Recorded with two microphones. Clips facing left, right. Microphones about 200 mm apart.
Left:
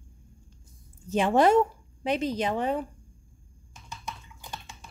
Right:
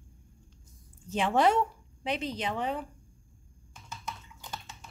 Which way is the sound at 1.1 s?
45° left (ahead or behind).